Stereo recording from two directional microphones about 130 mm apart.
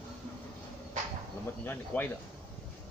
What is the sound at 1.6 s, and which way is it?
Speech, 15° left (ahead or behind).